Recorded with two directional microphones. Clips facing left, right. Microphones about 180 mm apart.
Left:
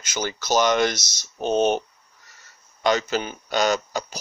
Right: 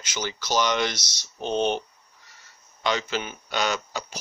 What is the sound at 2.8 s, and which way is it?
Speech, 45° left (ahead or behind).